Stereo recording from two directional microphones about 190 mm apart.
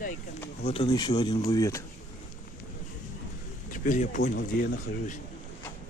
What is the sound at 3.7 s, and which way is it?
Speech, 40° left (ahead or behind).